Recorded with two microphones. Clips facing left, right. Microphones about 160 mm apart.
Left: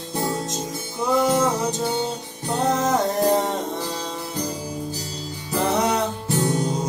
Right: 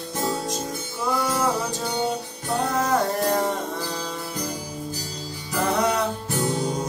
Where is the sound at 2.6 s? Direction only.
20° left (ahead or behind).